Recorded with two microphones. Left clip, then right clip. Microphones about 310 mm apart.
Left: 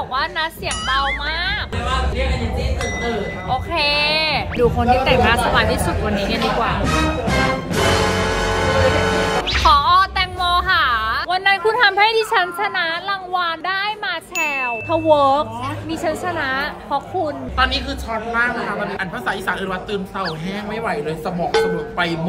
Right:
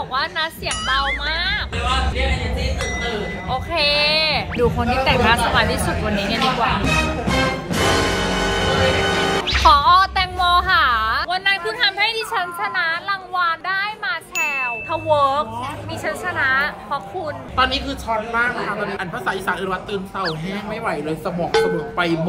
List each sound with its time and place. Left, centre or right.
0.1 s speech: centre
3.4 s a sound: centre
11.2 s a sound: centre
14.4 s ding: left
16.3 s a woman's voice: left
17.6 s speech: centre
21.5 s speech: centre